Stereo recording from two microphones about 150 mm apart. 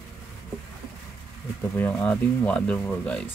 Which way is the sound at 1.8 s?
10° left (ahead or behind).